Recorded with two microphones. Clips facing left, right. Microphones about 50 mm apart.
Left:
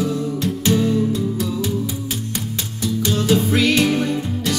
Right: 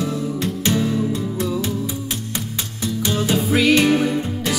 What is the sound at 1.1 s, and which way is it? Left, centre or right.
Music, right.